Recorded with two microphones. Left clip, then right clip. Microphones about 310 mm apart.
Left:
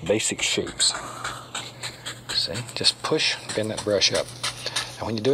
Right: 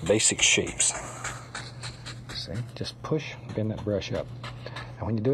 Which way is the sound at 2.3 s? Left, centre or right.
Left.